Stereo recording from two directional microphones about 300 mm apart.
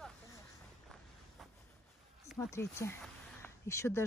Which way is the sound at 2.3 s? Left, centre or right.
Centre.